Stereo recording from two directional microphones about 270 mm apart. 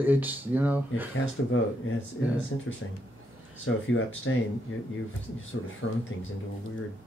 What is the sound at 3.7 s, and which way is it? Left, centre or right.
Speech, left.